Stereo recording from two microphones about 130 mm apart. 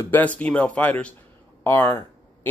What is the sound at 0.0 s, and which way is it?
Speech, 15° left (ahead or behind).